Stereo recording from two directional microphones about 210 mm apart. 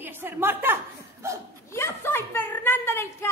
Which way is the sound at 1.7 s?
10° left (ahead or behind).